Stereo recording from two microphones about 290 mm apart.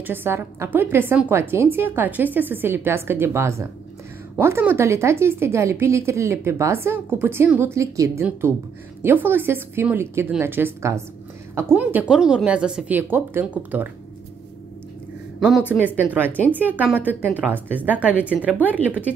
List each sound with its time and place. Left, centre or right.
0.0 s a woman's voice: centre
15.4 s a woman's voice: centre
16.3 s a woman's voice: centre
16.5 s a woman's voice: centre